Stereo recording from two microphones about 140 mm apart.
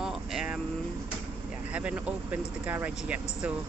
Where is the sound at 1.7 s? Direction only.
10° right (ahead or behind).